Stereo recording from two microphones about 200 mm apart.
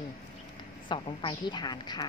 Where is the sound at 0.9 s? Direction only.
25° left (ahead or behind).